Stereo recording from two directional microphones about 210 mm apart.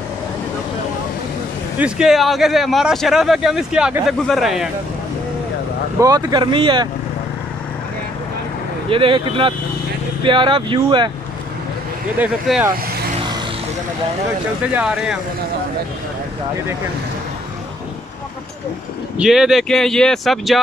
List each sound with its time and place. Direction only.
1.8 s speech: 5° right (ahead or behind)
5.9 s speech: 15° right (ahead or behind)
8.9 s speech: 25° right (ahead or behind)
12.2 s speech: 5° right (ahead or behind)
14.6 s speech: 5° right (ahead or behind)
19.1 s speech: centre (ahead or behind)